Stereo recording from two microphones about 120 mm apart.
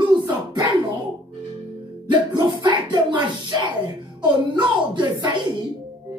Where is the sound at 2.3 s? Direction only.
40° right (ahead or behind).